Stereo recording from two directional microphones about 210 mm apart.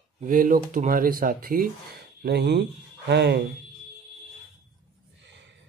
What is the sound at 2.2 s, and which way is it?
Speech, 55° right (ahead or behind).